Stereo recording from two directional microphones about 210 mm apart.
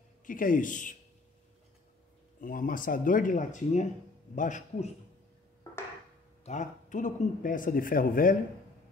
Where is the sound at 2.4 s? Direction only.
40° left (ahead or behind).